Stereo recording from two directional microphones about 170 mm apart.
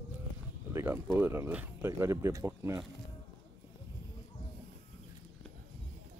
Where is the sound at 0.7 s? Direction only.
15° right (ahead or behind).